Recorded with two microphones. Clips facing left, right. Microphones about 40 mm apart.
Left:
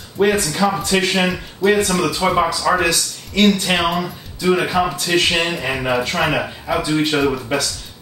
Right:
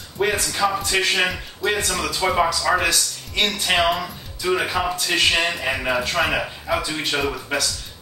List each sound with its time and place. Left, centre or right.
0.3 s speech: centre